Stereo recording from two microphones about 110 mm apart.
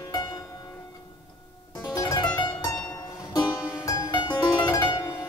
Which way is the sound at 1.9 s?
40° left (ahead or behind).